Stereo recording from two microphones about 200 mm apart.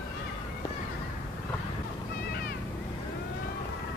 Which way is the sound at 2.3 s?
50° left (ahead or behind).